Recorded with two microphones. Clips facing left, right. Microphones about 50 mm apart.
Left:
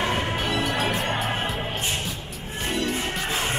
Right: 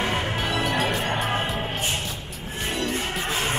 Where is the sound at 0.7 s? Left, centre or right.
Centre.